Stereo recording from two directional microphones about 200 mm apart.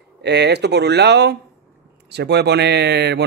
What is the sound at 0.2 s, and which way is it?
Speech, 55° right (ahead or behind).